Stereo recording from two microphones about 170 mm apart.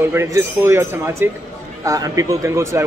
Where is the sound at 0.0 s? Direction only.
15° right (ahead or behind).